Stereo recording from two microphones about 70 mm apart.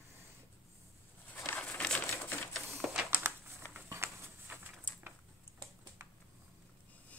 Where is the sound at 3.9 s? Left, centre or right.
Right.